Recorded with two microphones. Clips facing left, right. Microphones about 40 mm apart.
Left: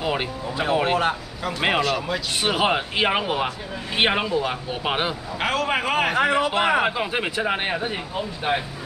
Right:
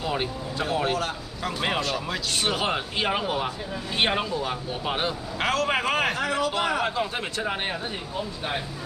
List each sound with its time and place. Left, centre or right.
0.0 s speech: left
1.8 s speech: centre
2.4 s speech: left
5.4 s speech: centre
6.1 s speech: left